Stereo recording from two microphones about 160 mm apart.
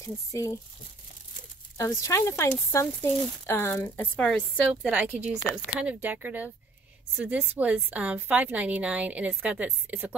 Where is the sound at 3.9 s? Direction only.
10° left (ahead or behind).